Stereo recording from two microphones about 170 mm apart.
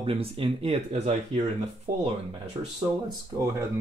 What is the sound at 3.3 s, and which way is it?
Speech, 20° right (ahead or behind).